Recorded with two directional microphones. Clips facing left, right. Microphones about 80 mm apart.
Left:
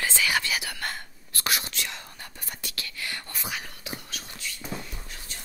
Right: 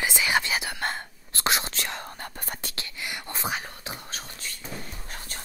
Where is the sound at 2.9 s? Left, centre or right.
Right.